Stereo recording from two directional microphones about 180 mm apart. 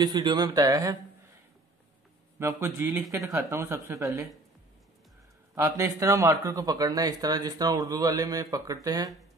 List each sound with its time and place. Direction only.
0.0 s speech: 25° right (ahead or behind)
2.3 s speech: 15° right (ahead or behind)
5.5 s speech: 15° right (ahead or behind)